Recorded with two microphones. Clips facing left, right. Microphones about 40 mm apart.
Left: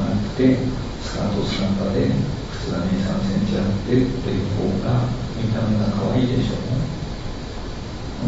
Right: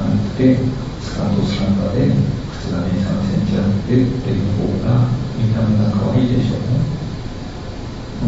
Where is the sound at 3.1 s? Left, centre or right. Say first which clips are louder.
Right 3 dB; centre.